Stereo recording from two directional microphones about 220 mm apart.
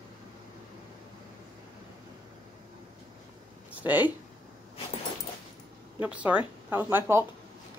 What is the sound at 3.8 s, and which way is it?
Speech, 10° right (ahead or behind).